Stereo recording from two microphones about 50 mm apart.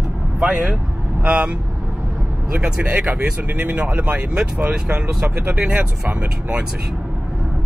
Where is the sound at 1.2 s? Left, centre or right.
Right.